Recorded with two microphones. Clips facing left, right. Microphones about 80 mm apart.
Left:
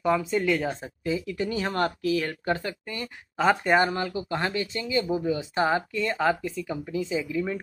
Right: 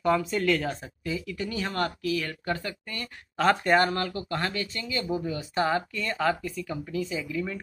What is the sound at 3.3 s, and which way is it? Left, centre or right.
Speech, centre.